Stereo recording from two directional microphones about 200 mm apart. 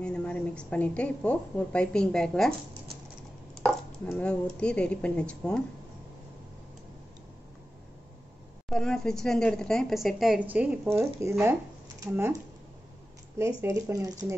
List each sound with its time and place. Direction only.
0.0 s a woman's voice: 5° left (ahead or behind)
3.6 s a woman's voice: 5° left (ahead or behind)
8.6 s a woman's voice: 5° left (ahead or behind); by 12.4 s 15° right (ahead or behind)
13.6 s speech: 15° right (ahead or behind)